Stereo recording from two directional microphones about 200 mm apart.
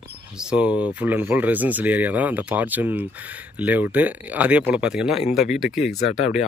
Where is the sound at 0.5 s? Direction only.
5° right (ahead or behind).